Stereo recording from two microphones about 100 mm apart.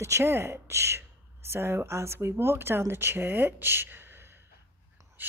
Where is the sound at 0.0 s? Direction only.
25° right (ahead or behind).